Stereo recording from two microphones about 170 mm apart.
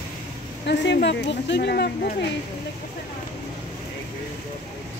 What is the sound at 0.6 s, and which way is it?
Speech, 85° left.